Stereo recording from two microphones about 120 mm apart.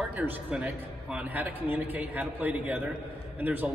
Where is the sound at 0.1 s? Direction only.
15° right (ahead or behind).